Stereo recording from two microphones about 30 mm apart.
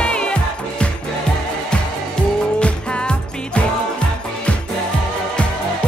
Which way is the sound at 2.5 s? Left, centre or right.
Left.